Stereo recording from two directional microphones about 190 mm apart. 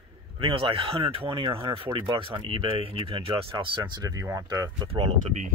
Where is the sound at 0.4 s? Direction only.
30° right (ahead or behind).